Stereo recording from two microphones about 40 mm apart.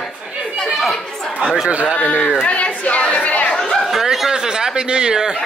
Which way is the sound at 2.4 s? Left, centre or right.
Left.